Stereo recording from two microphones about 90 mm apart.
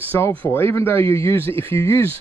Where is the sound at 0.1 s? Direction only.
20° left (ahead or behind).